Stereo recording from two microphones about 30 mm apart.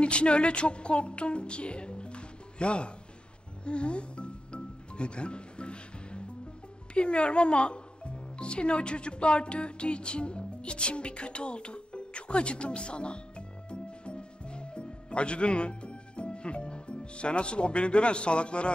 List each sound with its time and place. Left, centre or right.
0.0 s a sound: left
3.6 s music: left
6.9 s speech: left